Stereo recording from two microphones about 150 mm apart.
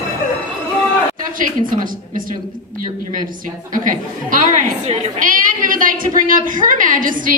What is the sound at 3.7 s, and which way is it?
A woman's voice, 60° right (ahead or behind).